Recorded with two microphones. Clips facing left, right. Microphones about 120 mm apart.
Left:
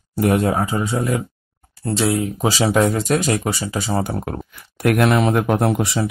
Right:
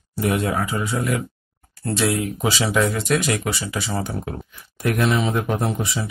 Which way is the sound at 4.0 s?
50° left (ahead or behind).